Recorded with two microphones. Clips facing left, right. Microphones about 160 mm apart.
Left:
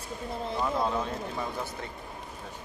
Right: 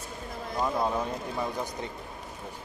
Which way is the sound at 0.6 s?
15° right (ahead or behind).